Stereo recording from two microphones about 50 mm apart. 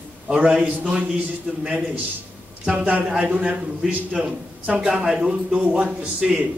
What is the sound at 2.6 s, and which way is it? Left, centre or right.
Speech, right.